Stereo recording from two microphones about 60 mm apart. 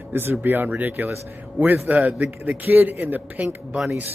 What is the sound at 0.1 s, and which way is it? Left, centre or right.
A man's voice, right.